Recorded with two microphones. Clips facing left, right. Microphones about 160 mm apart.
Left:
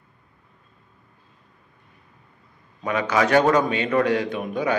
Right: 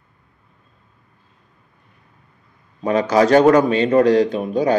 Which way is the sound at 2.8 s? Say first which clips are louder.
Right 6 dB; 35° right (ahead or behind).